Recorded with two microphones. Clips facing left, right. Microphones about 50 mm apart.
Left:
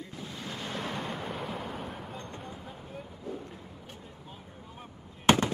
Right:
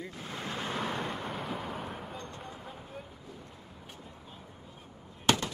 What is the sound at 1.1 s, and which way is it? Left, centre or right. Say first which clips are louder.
Artillery fire: even; centre.